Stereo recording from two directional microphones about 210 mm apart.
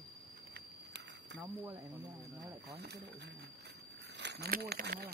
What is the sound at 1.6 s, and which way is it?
Speech, 10° right (ahead or behind).